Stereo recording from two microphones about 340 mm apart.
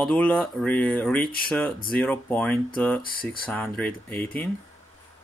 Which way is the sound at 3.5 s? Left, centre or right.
Centre.